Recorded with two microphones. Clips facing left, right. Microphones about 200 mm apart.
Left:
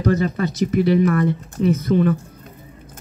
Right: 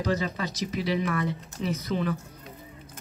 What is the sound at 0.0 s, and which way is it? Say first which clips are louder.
Speech: left 8 dB; 55° left (ahead or behind).